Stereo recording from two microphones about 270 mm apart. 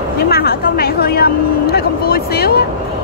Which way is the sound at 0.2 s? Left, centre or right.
Left.